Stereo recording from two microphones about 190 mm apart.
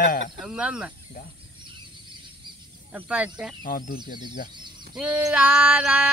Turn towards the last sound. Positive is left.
turn(degrees=-5)  # may be behind; listen again after turning